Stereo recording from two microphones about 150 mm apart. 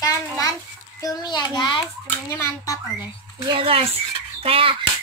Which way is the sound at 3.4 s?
35° right (ahead or behind).